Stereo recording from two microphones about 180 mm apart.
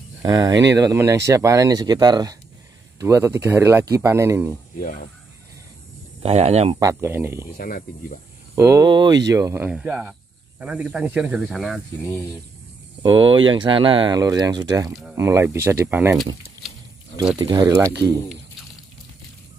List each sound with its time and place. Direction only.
0.2 s speech: 20° right (ahead or behind)
4.7 s speech: 50° left (ahead or behind)
6.2 s speech: 35° right (ahead or behind)
6.8 s speech: 15° right (ahead or behind)
7.5 s speech: 55° left (ahead or behind)
8.5 s speech: 20° right (ahead or behind); by 12.1 s centre (ahead or behind)
13.0 s speech: 30° right (ahead or behind)
17.4 s speech: 20° right (ahead or behind)